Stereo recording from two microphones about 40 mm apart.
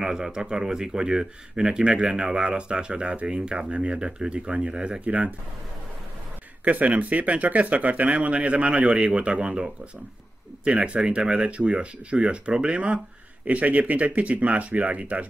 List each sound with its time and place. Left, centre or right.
0.0 s speech: centre
5.0 s speech: right
6.6 s speech: right